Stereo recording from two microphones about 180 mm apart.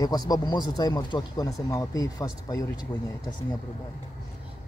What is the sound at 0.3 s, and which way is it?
Speech, 25° left (ahead or behind).